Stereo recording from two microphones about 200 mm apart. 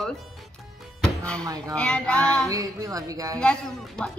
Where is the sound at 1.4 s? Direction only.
20° right (ahead or behind).